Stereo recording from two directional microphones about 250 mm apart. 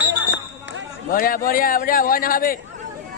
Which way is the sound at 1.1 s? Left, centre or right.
Left.